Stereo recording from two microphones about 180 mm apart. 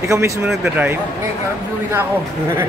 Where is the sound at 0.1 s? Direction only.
15° right (ahead or behind).